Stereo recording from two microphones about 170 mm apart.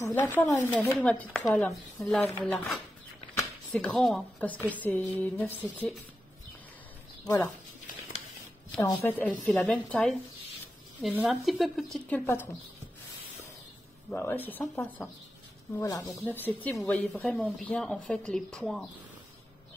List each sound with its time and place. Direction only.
0.0 s music: 15° left (ahead or behind)
1.5 s a woman's voice: 5° left (ahead or behind)
4.7 s music: 10° left (ahead or behind)
8.9 s music: 10° left (ahead or behind)
9.4 s a woman's voice: 10° left (ahead or behind)
11.0 s speech: 10° right (ahead or behind)
11.2 s a woman's voice: centre (ahead or behind)
14.1 s music: 15° left (ahead or behind)
15.8 s speech: 20° left (ahead or behind)
16.2 s music: 10° left (ahead or behind)
16.6 s a woman's voice: 10° left (ahead or behind)